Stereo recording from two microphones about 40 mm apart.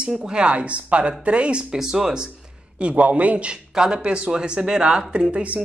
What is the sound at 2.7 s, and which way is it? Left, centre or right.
Speech, right.